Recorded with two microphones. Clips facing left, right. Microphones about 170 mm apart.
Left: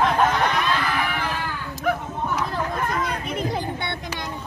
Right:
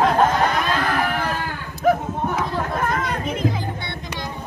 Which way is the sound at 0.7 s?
40° right (ahead or behind).